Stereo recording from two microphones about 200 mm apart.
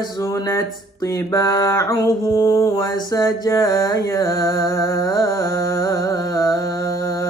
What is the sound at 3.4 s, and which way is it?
Music, 15° left (ahead or behind).